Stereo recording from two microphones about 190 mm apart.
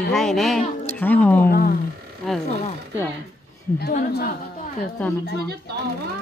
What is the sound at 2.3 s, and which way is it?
Speech, centre (ahead or behind).